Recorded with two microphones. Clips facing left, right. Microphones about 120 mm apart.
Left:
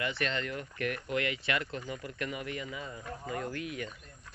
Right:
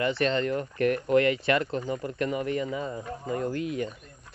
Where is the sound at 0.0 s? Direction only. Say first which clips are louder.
Right 9 dB; 35° right (ahead or behind).